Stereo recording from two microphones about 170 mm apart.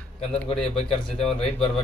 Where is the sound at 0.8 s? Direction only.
35° left (ahead or behind).